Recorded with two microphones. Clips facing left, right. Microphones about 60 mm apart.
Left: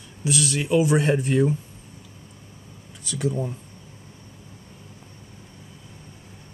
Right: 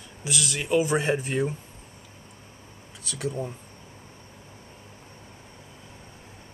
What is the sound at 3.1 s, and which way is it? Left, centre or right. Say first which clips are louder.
Speech: left 4 dB; centre.